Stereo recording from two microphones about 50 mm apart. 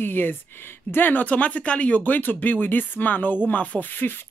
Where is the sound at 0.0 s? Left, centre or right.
Left.